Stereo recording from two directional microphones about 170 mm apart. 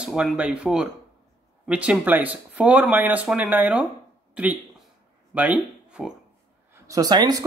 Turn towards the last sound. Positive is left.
turn(degrees=-25)  # may be behind; listen again after turning